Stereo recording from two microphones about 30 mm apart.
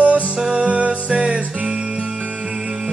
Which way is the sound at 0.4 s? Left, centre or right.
Right.